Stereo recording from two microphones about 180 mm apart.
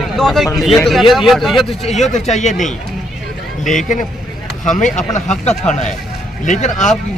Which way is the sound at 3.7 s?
45° left (ahead or behind).